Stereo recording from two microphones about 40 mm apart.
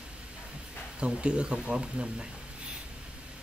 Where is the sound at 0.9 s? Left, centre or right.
Right.